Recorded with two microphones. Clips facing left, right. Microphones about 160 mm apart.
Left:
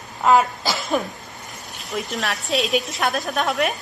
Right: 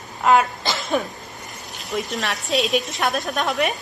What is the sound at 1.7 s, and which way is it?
Speech, centre (ahead or behind).